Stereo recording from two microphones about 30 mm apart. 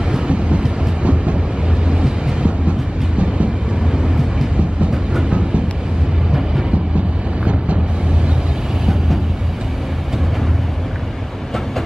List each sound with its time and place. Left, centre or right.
0.3 s train: right
7.4 s vehicle: right